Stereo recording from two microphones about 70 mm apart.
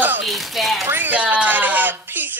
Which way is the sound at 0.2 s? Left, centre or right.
Centre.